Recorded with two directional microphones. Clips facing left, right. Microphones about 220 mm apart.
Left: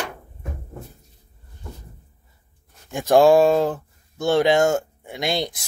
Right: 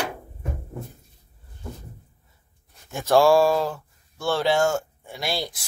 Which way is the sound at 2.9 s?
15° left (ahead or behind).